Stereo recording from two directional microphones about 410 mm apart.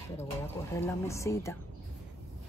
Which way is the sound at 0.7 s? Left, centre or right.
Centre.